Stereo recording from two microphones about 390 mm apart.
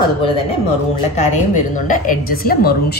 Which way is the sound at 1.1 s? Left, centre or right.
Centre.